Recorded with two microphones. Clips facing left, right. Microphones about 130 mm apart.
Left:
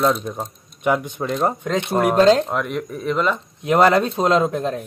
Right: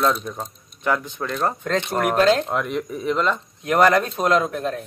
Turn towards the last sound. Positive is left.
turn(degrees=25)  # may be behind; listen again after turning